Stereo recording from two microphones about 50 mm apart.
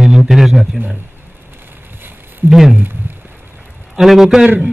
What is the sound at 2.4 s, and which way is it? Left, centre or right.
Speech, centre.